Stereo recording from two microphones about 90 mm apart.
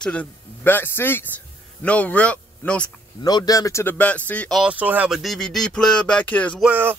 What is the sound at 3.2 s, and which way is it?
Speech, 50° left (ahead or behind).